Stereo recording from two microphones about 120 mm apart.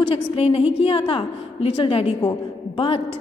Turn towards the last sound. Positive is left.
turn(degrees=50)  # may be behind; listen again after turning